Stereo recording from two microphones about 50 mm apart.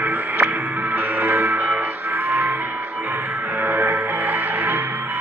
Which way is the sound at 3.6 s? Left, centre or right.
Right.